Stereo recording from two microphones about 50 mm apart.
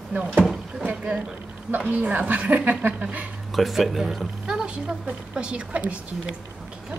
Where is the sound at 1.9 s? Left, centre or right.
Right.